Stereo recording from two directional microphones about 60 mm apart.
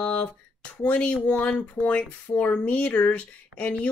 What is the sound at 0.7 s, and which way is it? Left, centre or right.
Speech, left.